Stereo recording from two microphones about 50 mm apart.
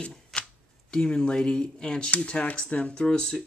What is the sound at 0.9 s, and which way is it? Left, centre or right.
Speech, centre.